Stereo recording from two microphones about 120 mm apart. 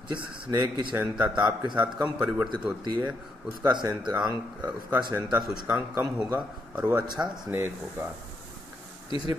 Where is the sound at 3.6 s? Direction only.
35° right (ahead or behind).